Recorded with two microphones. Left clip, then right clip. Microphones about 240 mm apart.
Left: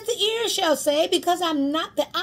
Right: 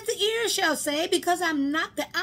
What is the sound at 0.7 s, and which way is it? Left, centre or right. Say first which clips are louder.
A woman's voice: left 5 dB; centre.